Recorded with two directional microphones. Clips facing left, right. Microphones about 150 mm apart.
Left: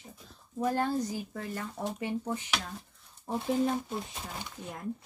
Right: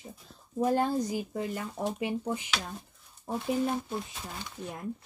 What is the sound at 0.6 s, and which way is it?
Speech, 15° right (ahead or behind).